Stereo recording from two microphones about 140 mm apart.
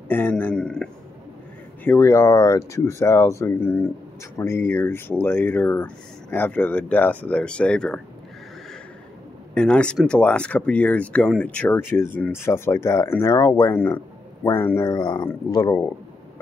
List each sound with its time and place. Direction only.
0.1 s speech: 15° left (ahead or behind)
1.9 s speech: 20° left (ahead or behind)
9.5 s speech: 5° left (ahead or behind); by 15.9 s 25° left (ahead or behind)